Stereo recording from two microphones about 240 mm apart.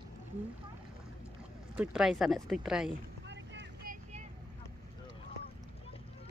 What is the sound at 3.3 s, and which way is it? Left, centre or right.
Boat, right.